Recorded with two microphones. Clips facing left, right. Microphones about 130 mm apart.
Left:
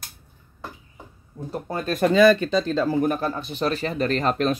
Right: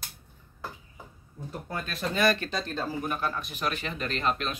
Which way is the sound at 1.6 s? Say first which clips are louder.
Left 7 dB; 35° left (ahead or behind).